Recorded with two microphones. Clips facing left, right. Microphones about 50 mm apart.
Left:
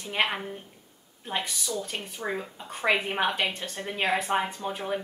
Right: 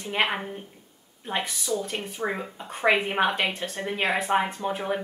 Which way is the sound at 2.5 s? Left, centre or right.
Centre.